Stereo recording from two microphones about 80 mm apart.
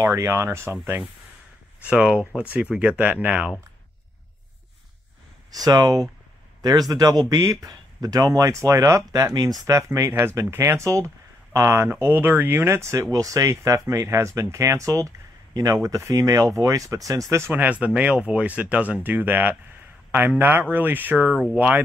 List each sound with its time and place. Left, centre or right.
0.0 s speech: right
1.8 s speech: centre
5.5 s speech: right
9.7 s speech: right
13.1 s speech: right
17.5 s speech: centre